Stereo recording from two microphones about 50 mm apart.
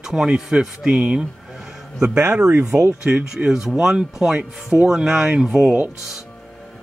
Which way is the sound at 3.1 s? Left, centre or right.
Right.